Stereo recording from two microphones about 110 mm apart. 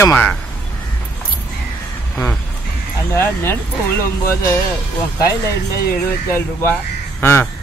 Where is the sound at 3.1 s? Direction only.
20° left (ahead or behind).